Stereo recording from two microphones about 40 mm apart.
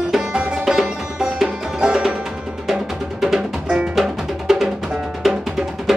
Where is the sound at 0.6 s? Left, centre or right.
Centre.